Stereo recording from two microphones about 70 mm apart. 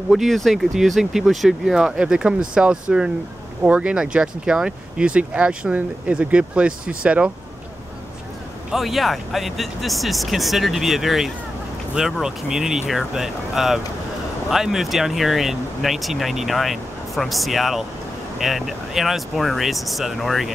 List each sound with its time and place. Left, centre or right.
0.1 s speech: centre
8.7 s speech: centre